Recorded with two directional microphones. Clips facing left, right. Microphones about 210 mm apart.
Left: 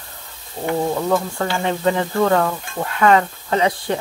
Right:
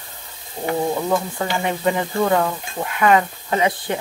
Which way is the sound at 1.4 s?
15° right (ahead or behind).